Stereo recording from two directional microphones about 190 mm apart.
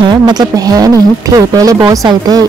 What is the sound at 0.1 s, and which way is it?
Speech, 20° right (ahead or behind).